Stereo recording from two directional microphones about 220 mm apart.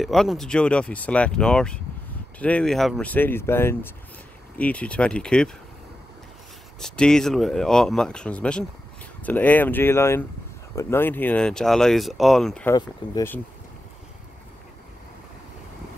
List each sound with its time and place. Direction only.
0.0 s speech: centre (ahead or behind)
6.8 s speech: 5° left (ahead or behind)
12.7 s speech: 15° left (ahead or behind)